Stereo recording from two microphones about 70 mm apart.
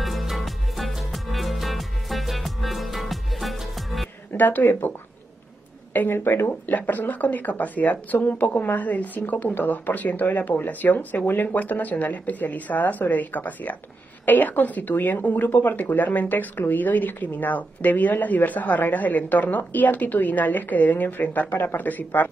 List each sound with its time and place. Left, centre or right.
0.0 s music: centre
4.3 s speech: left
5.9 s speech: left